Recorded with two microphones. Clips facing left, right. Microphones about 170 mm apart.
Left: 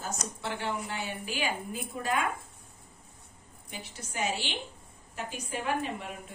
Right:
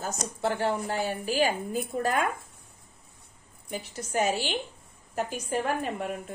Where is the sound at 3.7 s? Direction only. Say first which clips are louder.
Right 10 dB; 45° right (ahead or behind).